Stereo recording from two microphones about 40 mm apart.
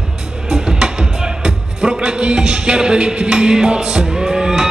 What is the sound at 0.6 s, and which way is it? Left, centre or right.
Music, centre.